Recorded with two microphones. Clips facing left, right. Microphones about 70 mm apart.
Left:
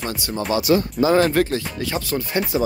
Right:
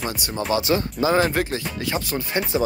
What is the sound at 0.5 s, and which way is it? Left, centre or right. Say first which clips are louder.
Speech: left 3 dB; right.